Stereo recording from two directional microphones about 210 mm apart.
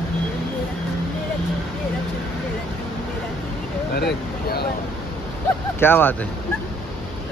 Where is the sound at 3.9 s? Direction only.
50° left (ahead or behind).